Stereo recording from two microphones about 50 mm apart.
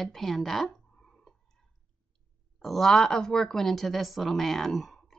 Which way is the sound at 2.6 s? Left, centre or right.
Centre.